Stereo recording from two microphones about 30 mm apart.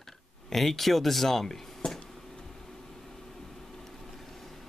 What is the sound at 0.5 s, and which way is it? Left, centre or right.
Speech, centre.